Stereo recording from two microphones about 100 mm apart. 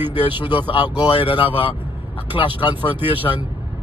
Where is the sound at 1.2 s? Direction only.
60° left (ahead or behind).